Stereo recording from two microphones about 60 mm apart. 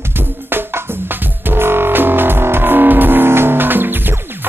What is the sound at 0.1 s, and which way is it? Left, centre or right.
Music, right.